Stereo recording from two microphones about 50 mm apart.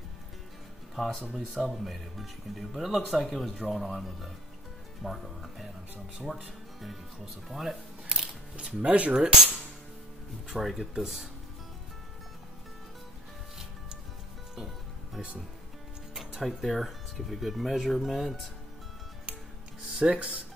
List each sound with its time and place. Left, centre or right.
0.9 s speech: centre
8.5 s speech: right
10.6 s speech: centre
11.0 s speech: centre
15.2 s speech: centre
19.9 s speech: right